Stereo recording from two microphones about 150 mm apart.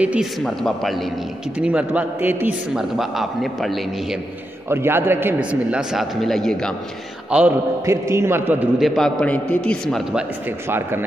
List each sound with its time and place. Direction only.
0.0 s a man's voice: 10° right (ahead or behind)
4.6 s a man's voice: 15° right (ahead or behind); by 6.7 s 5° left (ahead or behind)
7.2 s a man's voice: 10° right (ahead or behind)
7.8 s a man's voice: 20° right (ahead or behind)
8.7 s a man's voice: centre (ahead or behind)
10.7 s a man's voice: 15° right (ahead or behind)